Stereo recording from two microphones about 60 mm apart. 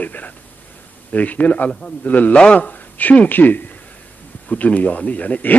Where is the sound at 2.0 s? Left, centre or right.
Left.